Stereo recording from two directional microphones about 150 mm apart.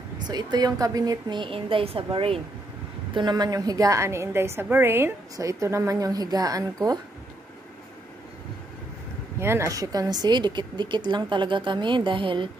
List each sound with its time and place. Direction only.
0.3 s a woman's voice: 25° right (ahead or behind)
9.4 s a woman's voice: 15° right (ahead or behind); by 12.4 s 35° right (ahead or behind)